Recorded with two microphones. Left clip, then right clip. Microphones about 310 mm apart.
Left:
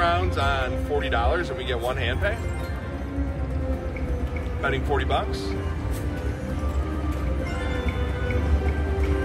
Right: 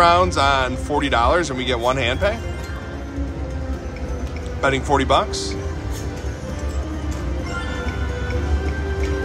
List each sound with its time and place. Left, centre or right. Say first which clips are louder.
0.0 s speech: right 9 dB; right
4.6 s speech: right 7 dB; centre